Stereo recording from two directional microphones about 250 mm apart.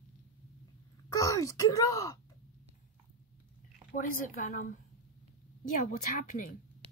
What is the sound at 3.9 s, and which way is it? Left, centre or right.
Speech, left.